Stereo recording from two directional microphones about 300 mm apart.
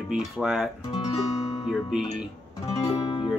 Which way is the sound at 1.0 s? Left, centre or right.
Centre.